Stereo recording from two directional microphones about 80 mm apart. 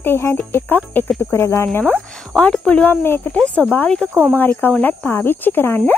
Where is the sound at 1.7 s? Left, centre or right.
Left.